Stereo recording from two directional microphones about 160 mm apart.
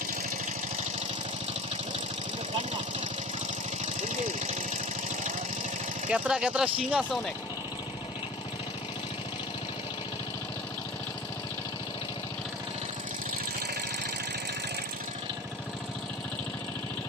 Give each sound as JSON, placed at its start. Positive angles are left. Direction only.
{"t": 4.1, "sound": "engine", "side_deg": -45}
{"t": 6.1, "sound": "speech", "side_deg": -5}